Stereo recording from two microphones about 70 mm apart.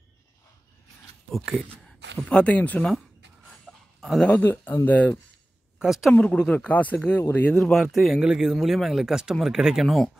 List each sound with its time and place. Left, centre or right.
2.2 s speech: centre
3.7 s a sound: centre
4.0 s speech: centre
4.3 s speech: left
5.8 s a woman's voice: centre
6.1 s speech: centre
7.5 s a man's voice: centre
9.8 s a man's voice: centre